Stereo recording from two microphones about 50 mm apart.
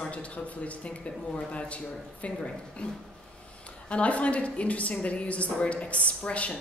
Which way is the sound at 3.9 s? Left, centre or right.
Left.